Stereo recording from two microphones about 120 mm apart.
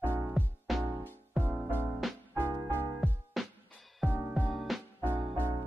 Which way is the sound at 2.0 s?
Centre (ahead or behind).